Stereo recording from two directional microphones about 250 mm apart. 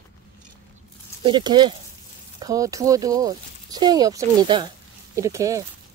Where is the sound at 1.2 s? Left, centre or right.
Centre.